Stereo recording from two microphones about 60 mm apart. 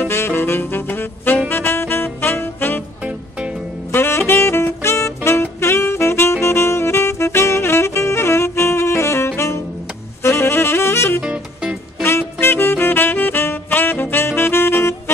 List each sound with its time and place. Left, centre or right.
0.0 s saxophone: left
3.0 s music: right
3.9 s saxophone: left
11.2 s music: centre
12.0 s saxophone: left